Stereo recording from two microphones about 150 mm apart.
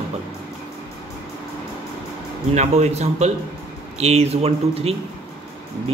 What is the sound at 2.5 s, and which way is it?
A man's voice, 50° right (ahead or behind).